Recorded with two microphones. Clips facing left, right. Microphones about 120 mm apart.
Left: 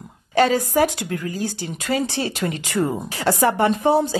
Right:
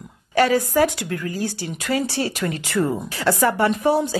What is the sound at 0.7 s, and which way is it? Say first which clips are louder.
Speech: even; 20° left (ahead or behind).